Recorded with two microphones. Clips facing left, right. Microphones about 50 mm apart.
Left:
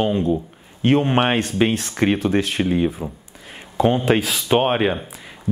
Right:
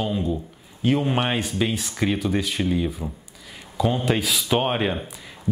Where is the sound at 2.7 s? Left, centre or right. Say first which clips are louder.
Left 4 dB; left.